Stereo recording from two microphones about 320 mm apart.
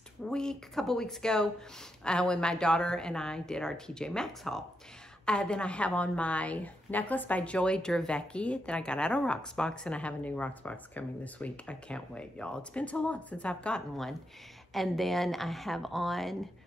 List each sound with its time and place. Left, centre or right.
0.3 s a woman's voice: centre